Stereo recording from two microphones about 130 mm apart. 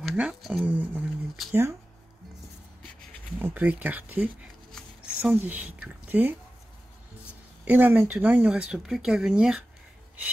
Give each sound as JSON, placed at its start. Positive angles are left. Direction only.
{"t": 0.0, "sound": "speech", "side_deg": -5}
{"t": 3.3, "sound": "speech", "side_deg": -15}
{"t": 7.6, "sound": "speech", "side_deg": -15}